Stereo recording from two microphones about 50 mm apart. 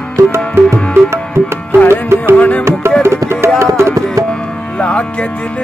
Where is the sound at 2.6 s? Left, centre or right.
Right.